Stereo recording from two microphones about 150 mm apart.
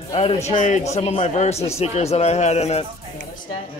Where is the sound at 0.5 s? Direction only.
55° left (ahead or behind).